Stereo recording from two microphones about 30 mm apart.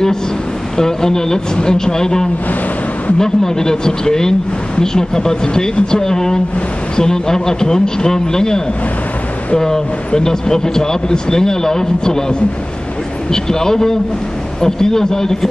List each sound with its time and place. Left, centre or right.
0.7 s a man's voice: centre